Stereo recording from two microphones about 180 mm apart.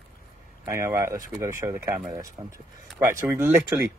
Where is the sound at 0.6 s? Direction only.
15° right (ahead or behind).